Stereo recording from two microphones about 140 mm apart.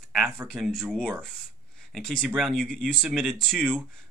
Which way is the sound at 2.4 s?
5° left (ahead or behind).